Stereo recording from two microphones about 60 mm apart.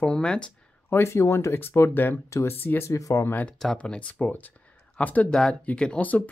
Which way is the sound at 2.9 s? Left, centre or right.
Left.